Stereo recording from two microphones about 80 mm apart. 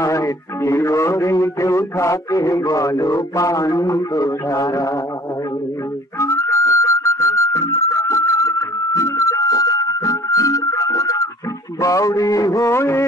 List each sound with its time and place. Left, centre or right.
0.0 s speech: left
6.1 s music: left
11.8 s speech: left